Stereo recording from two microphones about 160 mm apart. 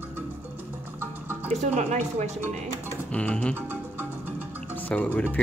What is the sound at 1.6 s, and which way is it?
Speech, 45° right (ahead or behind).